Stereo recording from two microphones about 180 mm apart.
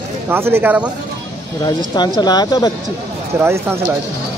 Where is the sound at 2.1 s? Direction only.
25° left (ahead or behind).